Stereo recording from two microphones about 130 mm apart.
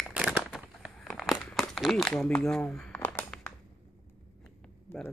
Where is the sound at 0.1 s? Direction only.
10° right (ahead or behind).